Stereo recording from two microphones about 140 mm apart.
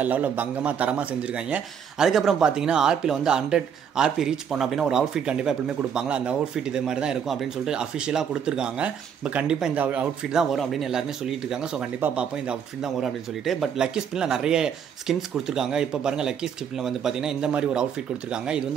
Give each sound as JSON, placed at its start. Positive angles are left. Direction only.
{"t": 0.0, "sound": "speech", "side_deg": -10}